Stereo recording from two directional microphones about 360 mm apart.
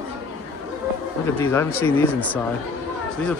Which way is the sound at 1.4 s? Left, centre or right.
Centre.